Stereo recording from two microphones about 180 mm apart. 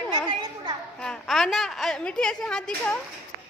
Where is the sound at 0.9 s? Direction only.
5° left (ahead or behind).